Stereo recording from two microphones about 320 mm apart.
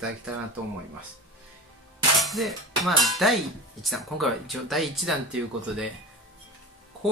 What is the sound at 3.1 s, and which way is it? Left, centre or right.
Speech, centre.